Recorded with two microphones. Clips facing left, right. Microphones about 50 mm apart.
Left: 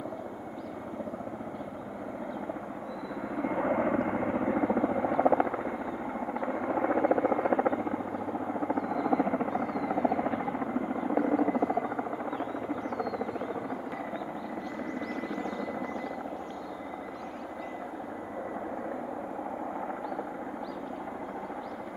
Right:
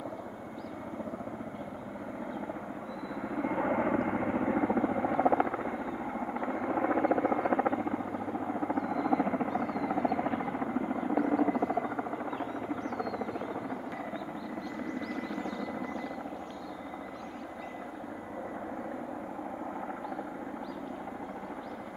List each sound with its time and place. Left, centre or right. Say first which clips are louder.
3.2 s vehicle: left 1 dB; centre
10.1 s a sound: left 1 dB; centre
15.4 s helicopter: left 2 dB; left